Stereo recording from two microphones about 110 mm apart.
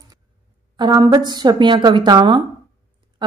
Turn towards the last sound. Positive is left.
turn(degrees=-45)  # may be behind; listen again after turning